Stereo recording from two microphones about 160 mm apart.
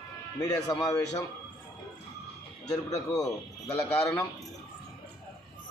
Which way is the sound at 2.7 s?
20° left (ahead or behind).